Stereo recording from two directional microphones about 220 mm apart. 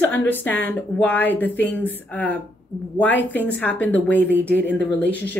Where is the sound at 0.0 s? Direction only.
10° left (ahead or behind).